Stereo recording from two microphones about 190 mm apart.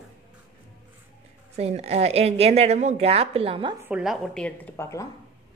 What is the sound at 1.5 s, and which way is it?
A woman's voice, 35° right (ahead or behind).